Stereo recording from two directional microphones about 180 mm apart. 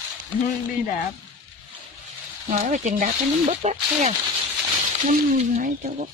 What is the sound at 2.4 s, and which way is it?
Speech, 45° right (ahead or behind).